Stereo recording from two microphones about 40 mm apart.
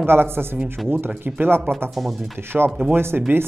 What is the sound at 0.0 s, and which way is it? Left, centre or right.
Speech, right.